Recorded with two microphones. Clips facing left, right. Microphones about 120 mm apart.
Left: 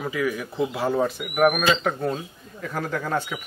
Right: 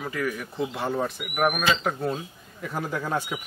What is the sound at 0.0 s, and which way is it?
Speech, 5° left (ahead or behind).